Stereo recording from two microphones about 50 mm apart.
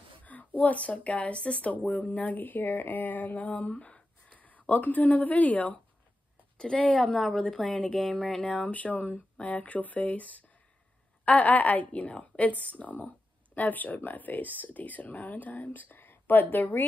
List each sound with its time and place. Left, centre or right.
0.2 s speech: left
6.6 s a woman's voice: centre
8.4 s speech: left